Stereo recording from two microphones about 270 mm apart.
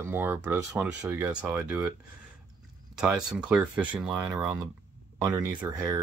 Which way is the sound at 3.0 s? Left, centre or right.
Centre.